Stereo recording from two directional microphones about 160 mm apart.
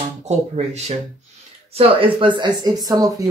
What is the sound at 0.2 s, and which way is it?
Speech, 45° right (ahead or behind).